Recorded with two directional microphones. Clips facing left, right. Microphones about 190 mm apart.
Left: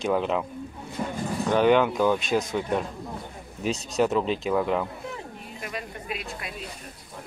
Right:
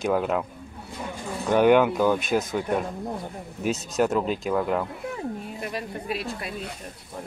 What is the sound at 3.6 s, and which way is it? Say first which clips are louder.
Speech: even; centre (ahead or behind).